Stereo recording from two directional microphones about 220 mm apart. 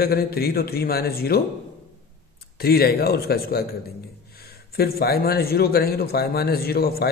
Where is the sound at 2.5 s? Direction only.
45° left (ahead or behind).